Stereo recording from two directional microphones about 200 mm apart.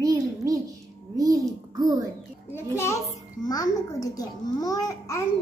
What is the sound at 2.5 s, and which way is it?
A child's voice, 15° left (ahead or behind).